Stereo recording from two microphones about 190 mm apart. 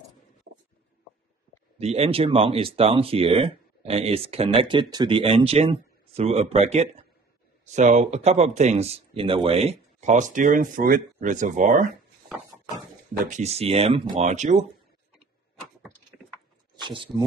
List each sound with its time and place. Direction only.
1.8 s speech: 30° right (ahead or behind)
13.3 s speech: 35° right (ahead or behind)
16.8 s speech: 25° right (ahead or behind)